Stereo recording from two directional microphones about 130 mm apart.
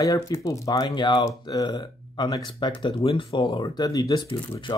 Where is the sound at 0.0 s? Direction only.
25° left (ahead or behind).